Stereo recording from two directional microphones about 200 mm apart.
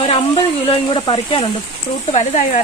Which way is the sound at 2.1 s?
35° left (ahead or behind).